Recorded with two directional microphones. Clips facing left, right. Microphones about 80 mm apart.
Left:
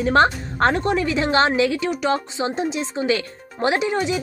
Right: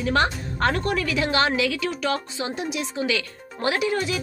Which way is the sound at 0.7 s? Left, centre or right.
Left.